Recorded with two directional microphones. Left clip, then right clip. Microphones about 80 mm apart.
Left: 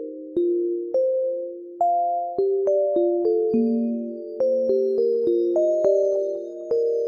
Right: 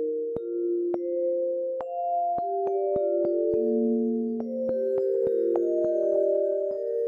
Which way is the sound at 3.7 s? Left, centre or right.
Left.